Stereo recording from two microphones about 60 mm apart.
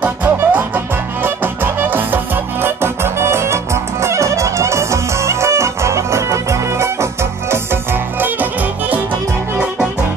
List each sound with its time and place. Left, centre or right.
0.0 s music: right
7.5 s music: right